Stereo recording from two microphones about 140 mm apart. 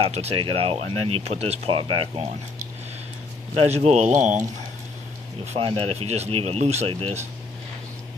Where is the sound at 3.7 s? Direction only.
50° right (ahead or behind).